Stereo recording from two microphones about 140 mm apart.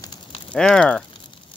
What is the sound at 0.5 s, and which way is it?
Speech, 5° left (ahead or behind).